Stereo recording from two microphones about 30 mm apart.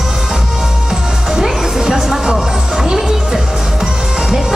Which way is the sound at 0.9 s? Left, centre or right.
Centre.